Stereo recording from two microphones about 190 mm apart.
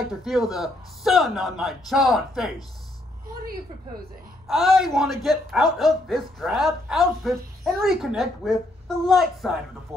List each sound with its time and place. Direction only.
0.2 s a man's voice: centre (ahead or behind)
4.5 s a man's voice: centre (ahead or behind)